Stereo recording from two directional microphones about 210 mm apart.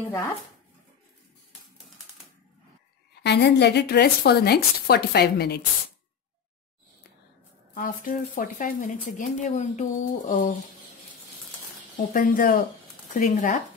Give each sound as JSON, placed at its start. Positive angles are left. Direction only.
{"t": 3.2, "sound": "speech", "side_deg": 55}
{"t": 7.7, "sound": "speech", "side_deg": 40}
{"t": 12.0, "sound": "speech", "side_deg": 40}